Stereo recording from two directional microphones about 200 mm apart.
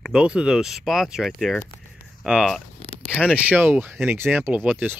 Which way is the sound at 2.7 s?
30° left (ahead or behind).